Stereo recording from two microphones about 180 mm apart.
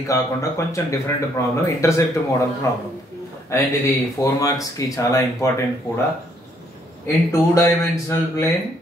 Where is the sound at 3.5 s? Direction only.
15° left (ahead or behind).